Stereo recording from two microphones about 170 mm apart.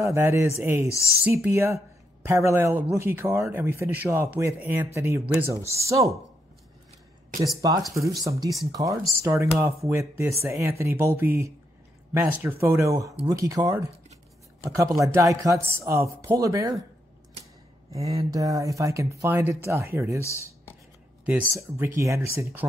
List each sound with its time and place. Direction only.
0.0 s speech: 15° right (ahead or behind)
7.6 s speech: 20° right (ahead or behind)
15.0 s speech: 20° right (ahead or behind)
18.0 s speech: 20° right (ahead or behind)
20.2 s speech: 15° left (ahead or behind)
21.5 s speech: 15° right (ahead or behind)